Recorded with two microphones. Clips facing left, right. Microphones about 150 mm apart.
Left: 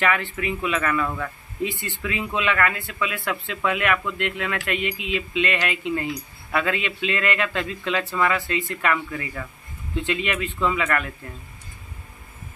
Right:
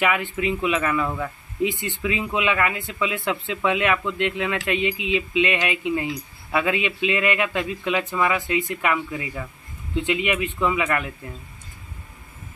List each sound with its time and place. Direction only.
0.0 s speech: 15° right (ahead or behind)